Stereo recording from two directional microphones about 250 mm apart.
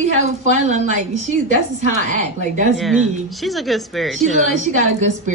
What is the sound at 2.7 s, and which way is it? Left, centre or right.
Speech, centre.